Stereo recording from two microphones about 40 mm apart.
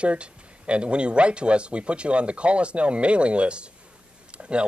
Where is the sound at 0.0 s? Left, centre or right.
Right.